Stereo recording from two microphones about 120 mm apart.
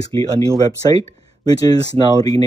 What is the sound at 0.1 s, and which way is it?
Speech, 30° left (ahead or behind).